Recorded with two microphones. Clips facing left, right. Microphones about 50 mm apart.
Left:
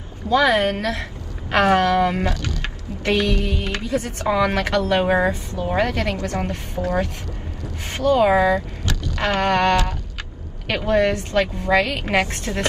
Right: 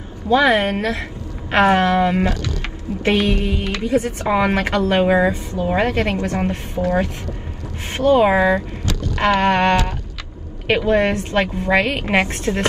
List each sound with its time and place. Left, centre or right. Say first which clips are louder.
0.3 s a woman's voice: right 2 dB; right
5.0 s a woman's voice: right 3 dB; centre
5.7 s a woman's voice: right 3 dB; right
9.0 s a sound: right 5 dB; right
10.7 s a woman's voice: right 2 dB; right